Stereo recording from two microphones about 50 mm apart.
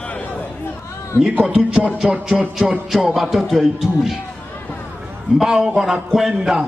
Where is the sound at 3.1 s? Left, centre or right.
Centre.